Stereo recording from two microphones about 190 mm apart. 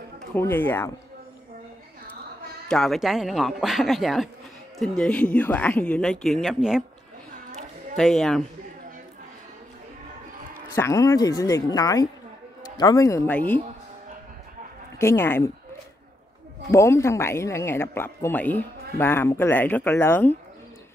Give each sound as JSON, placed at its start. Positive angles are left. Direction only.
{"t": 0.3, "sound": "speech", "side_deg": 10}
{"t": 2.7, "sound": "speech", "side_deg": 0}
{"t": 7.9, "sound": "speech", "side_deg": 0}
{"t": 10.7, "sound": "speech", "side_deg": 15}
{"t": 15.0, "sound": "speech", "side_deg": 15}
{"t": 16.7, "sound": "speech", "side_deg": 15}